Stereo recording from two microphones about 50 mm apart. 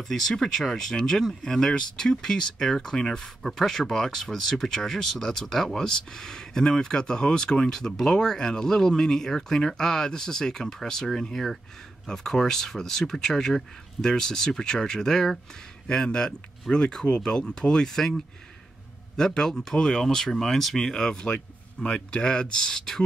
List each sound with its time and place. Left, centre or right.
0.0 s speech: centre